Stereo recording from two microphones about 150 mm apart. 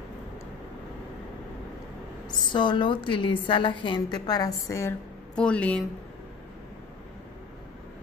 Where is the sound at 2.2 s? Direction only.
30° left (ahead or behind).